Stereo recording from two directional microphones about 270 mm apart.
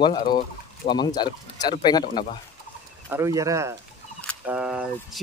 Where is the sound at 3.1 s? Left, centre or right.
Centre.